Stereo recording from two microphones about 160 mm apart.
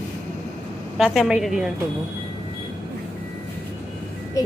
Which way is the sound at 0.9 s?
Centre (ahead or behind).